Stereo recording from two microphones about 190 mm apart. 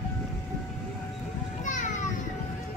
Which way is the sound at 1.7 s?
40° left (ahead or behind).